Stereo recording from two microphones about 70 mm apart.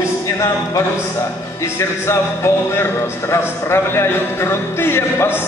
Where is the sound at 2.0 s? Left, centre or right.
Left.